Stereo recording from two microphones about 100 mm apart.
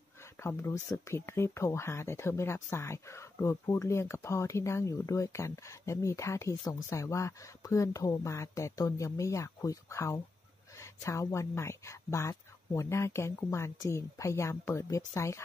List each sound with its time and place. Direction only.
0.4 s speech: 25° left (ahead or behind)